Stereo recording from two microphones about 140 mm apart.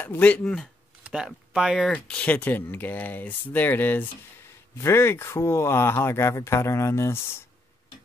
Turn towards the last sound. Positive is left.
turn(degrees=20)  # may be behind; listen again after turning